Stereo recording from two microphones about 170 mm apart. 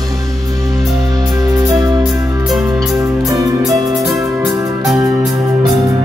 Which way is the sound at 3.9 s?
Centre (ahead or behind).